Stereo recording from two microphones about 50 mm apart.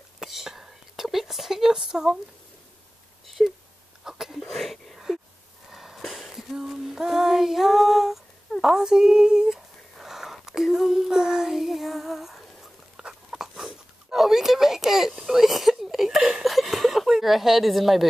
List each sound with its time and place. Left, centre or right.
0.2 s whispering: centre
4.0 s sneeze: centre
4.3 s a sound: centre
5.7 s female singing: centre
8.5 s speech: centre
8.8 s female singing: centre
9.9 s child singing: centre
12.9 s a sound: centre